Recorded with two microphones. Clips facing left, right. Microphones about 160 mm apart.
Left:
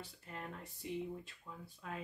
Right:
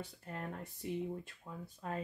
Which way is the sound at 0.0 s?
45° right (ahead or behind).